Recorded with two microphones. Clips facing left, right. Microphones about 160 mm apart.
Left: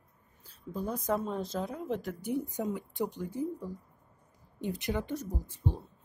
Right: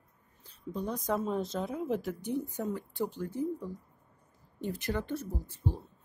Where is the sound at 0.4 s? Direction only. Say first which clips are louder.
Even; 5° left (ahead or behind).